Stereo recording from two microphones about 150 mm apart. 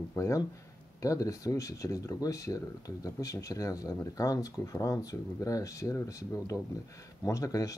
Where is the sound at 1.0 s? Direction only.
20° left (ahead or behind).